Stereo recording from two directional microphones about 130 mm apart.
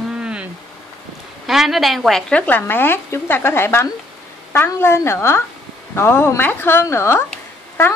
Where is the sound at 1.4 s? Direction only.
Centre (ahead or behind).